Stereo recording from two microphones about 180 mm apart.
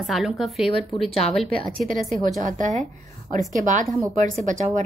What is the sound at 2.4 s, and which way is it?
Speech, 40° right (ahead or behind).